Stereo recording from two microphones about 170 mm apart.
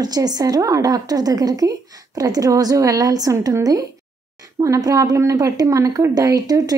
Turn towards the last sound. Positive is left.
turn(degrees=-20)  # may be behind; listen again after turning